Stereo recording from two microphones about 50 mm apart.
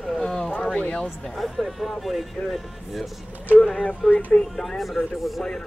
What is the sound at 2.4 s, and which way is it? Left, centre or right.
Speech, left.